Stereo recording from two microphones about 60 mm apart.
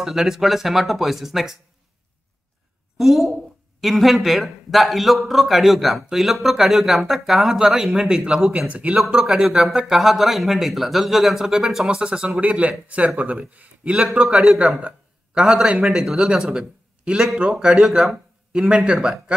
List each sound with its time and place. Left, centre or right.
0.0 s a man's voice: centre
3.0 s a man's voice: centre
8.5 s a man's voice: right; by 18.1 s centre
18.5 s speech: centre